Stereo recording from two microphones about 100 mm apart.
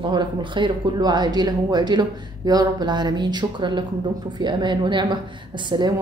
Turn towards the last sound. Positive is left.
turn(degrees=-50)  # may be behind; listen again after turning